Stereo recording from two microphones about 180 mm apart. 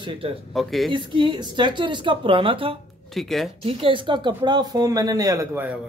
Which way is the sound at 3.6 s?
30° right (ahead or behind).